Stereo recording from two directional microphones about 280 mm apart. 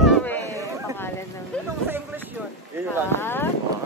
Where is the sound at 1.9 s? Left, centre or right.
Centre.